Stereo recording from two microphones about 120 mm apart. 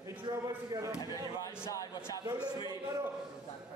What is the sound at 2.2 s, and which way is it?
Speech, 30° right (ahead or behind).